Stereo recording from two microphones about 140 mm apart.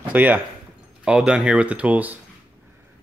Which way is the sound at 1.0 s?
5° right (ahead or behind).